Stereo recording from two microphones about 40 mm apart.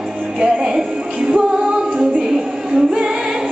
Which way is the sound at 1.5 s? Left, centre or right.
Centre.